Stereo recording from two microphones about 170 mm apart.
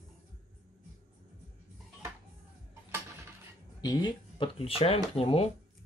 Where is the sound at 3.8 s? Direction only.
25° left (ahead or behind).